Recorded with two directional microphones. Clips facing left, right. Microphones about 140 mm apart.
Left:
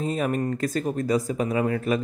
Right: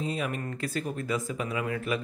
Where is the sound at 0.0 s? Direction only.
45° left (ahead or behind).